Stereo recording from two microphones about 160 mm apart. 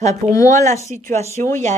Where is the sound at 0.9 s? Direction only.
50° right (ahead or behind).